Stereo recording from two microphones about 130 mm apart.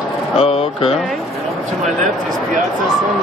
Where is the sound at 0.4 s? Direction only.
50° left (ahead or behind).